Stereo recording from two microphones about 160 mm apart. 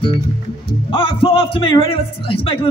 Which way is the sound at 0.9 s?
35° left (ahead or behind).